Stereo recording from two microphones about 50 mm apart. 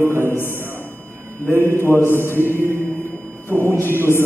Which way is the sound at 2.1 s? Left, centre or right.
Right.